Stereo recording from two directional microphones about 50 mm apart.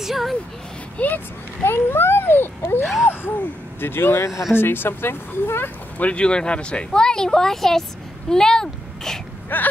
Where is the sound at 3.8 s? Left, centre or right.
Left.